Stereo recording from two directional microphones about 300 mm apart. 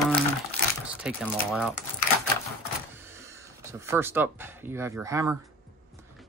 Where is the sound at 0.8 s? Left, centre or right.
Centre.